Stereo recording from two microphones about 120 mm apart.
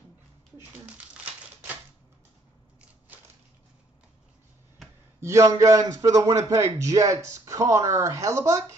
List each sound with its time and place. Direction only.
0.6 s crumpling: 15° right (ahead or behind)
5.2 s speech: 25° right (ahead or behind)